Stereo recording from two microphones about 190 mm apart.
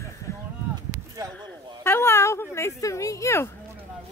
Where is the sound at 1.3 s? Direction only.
10° left (ahead or behind).